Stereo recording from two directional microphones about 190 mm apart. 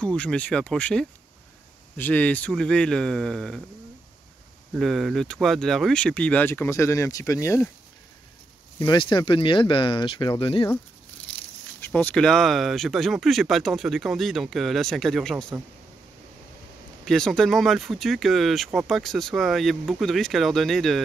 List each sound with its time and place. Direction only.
0.0 s speech: 5° left (ahead or behind)
4.7 s speech: centre (ahead or behind)
8.7 s speech: 25° left (ahead or behind)
11.8 s speech: 10° left (ahead or behind)
17.0 s speech: 5° left (ahead or behind)